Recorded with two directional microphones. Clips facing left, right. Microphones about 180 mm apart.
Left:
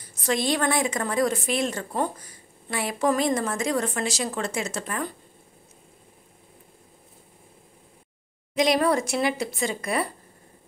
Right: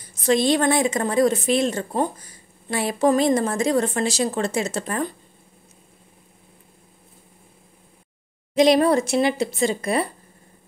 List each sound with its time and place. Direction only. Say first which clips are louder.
0.1 s a woman's voice: right 6 dB; 25° right (ahead or behind)
8.5 s a woman's voice: right 5 dB; 30° right (ahead or behind)